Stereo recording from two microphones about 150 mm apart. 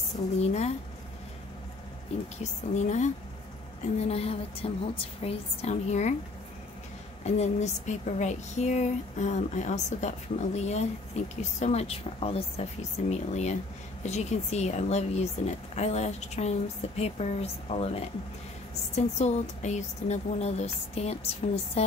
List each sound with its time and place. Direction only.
0.4 s speech: 45° left (ahead or behind)
2.4 s speech: 50° left (ahead or behind)
7.2 s speech: 50° left (ahead or behind)